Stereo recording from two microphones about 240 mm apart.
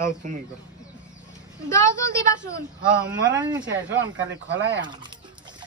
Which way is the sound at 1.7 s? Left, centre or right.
Centre.